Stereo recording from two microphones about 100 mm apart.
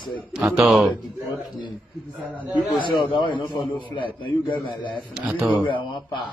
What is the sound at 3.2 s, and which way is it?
A man's voice, 55° left (ahead or behind).